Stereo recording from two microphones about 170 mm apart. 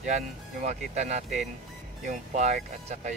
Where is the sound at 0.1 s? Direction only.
45° right (ahead or behind).